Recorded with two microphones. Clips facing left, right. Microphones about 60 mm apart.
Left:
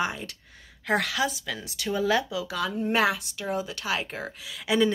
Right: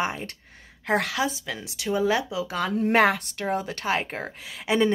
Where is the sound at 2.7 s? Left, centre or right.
Right.